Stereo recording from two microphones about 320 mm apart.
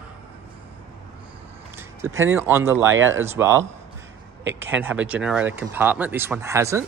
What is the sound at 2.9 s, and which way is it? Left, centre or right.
Speech, right.